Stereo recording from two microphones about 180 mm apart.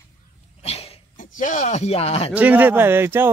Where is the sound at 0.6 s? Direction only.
35° left (ahead or behind).